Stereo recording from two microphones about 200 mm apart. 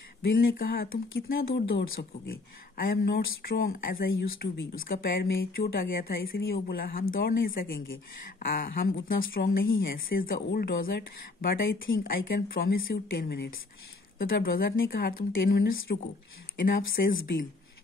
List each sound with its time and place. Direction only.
0.2 s speech: 45° left (ahead or behind)